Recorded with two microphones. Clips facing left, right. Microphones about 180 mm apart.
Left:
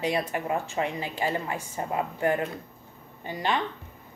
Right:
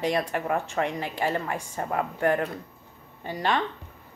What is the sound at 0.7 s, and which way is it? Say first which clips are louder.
Speech: right 1 dB; 5° left (ahead or behind).